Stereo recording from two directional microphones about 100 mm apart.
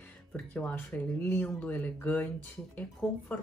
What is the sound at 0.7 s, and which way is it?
Speech, 25° left (ahead or behind).